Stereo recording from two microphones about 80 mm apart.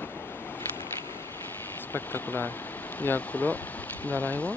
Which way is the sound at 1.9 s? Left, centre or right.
Left.